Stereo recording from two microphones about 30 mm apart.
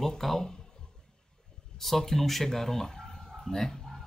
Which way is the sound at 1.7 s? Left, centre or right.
Centre.